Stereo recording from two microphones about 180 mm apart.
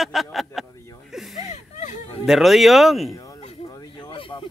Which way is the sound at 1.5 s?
40° left (ahead or behind).